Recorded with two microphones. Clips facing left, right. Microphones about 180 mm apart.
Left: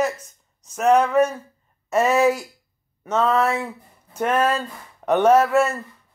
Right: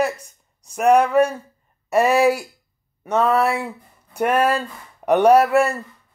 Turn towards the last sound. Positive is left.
turn(degrees=-15)  # may be behind; listen again after turning